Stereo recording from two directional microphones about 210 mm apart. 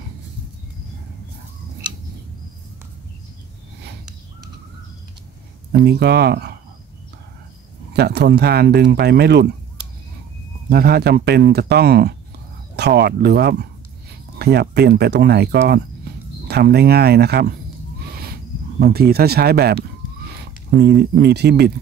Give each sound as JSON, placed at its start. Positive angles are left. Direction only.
{"t": 5.7, "sound": "speech", "side_deg": -50}
{"t": 7.9, "sound": "speech", "side_deg": -50}
{"t": 10.7, "sound": "speech", "side_deg": -50}
{"t": 18.8, "sound": "speech", "side_deg": -45}